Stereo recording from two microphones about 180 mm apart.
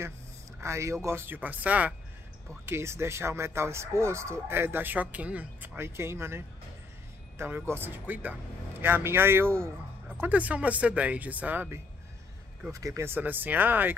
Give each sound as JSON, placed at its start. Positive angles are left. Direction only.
{"t": 0.6, "sound": "a man's voice", "side_deg": -15}